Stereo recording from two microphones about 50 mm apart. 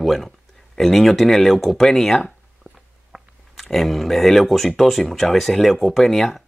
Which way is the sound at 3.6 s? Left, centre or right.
Centre.